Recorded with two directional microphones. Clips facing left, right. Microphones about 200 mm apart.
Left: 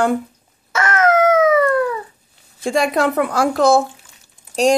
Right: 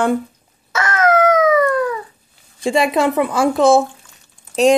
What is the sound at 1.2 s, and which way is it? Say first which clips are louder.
Howl: even; 25° left (ahead or behind).